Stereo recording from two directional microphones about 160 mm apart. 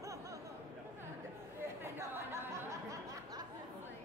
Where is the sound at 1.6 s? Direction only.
15° right (ahead or behind).